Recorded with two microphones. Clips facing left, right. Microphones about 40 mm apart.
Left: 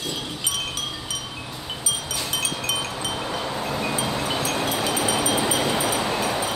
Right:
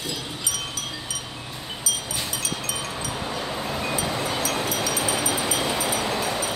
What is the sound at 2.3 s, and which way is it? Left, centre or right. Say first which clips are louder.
Wind chime: left 4 dB; left.